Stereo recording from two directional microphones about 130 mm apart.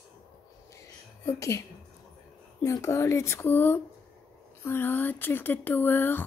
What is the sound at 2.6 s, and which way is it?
Speech, 25° left (ahead or behind).